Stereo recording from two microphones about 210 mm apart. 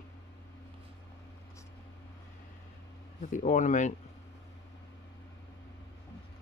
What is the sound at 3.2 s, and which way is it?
Speech, 35° left (ahead or behind).